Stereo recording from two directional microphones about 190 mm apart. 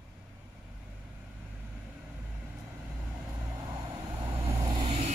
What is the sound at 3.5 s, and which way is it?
Vehicle, 20° right (ahead or behind).